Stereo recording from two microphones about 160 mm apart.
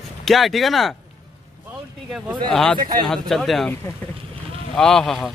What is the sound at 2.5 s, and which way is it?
Speech, 5° left (ahead or behind).